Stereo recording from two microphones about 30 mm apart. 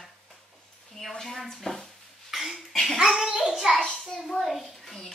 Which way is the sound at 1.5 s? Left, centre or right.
Centre.